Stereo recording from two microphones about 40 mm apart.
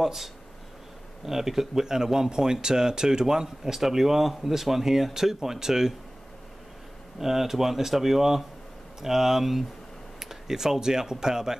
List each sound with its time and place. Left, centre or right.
0.0 s speech: centre
7.2 s speech: centre